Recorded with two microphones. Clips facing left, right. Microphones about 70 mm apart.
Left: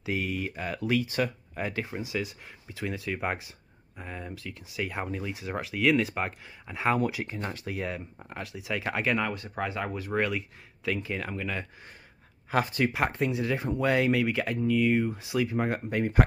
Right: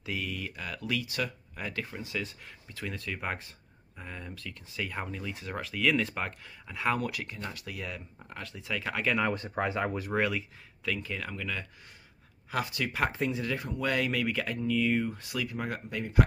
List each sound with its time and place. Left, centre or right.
0.0 s speech: left; by 6.2 s centre
6.2 s speech: left
7.3 s speech: left
8.2 s speech: centre
9.6 s speech: centre
10.1 s speech: centre
10.9 s speech: centre
12.4 s speech: left
13.1 s speech: centre
13.5 s speech: left
14.1 s speech: centre
15.0 s speech: centre
15.3 s speech: left
15.9 s speech: left